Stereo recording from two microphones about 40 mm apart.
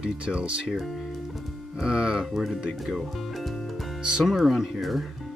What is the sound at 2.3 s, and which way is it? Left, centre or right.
Speech, centre.